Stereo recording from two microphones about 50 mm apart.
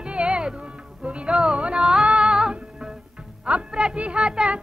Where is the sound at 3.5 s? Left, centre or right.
Right.